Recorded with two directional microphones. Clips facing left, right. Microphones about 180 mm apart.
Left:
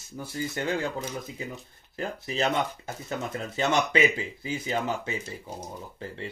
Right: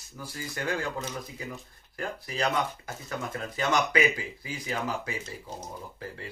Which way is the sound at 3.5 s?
25° left (ahead or behind).